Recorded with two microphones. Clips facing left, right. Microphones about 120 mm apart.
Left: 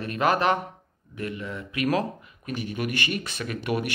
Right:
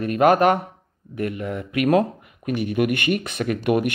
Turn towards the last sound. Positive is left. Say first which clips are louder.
# right 7 dB
turn(degrees=-50)  # may be behind; listen again after turning